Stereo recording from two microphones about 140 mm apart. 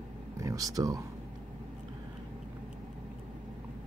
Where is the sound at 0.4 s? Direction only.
25° right (ahead or behind).